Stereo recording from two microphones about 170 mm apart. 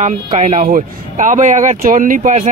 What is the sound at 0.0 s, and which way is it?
Speech, 45° right (ahead or behind).